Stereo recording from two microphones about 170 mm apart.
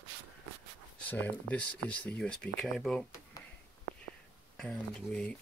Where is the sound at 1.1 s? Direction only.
10° left (ahead or behind).